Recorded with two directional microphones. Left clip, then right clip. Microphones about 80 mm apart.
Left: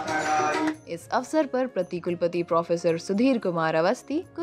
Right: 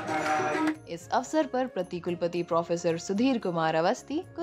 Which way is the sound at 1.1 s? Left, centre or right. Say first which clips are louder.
Left 2 dB; left.